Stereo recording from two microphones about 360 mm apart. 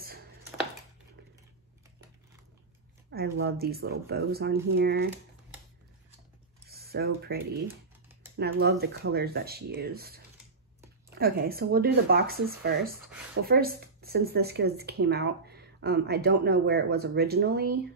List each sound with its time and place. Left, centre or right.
3.1 s speech: right
6.7 s speech: right